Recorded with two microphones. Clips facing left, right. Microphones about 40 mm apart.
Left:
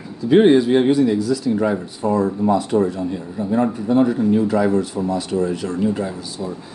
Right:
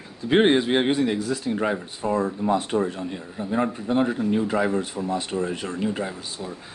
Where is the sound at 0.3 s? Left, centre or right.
Right.